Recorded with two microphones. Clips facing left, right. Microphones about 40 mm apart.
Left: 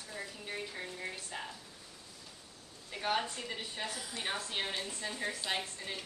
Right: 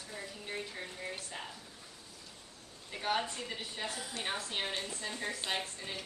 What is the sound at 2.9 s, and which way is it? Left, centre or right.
Speech, centre.